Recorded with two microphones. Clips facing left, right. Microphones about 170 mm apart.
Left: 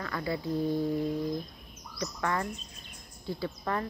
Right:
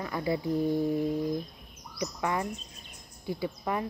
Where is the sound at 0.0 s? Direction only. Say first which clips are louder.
Right 3 dB; 20° right (ahead or behind).